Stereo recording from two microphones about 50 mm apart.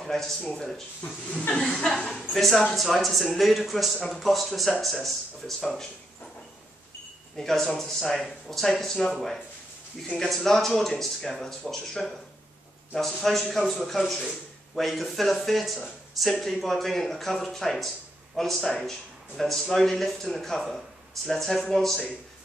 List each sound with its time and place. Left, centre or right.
0.0 s speech: centre
1.0 s speech: left
1.6 s speech: centre
7.3 s speech: centre